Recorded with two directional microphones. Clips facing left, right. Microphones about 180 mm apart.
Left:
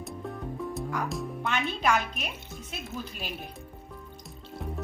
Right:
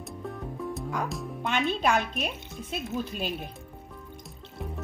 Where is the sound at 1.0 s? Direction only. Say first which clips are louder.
Left 1 dB; centre (ahead or behind).